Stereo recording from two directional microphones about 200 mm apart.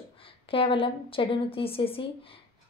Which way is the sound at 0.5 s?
25° left (ahead or behind).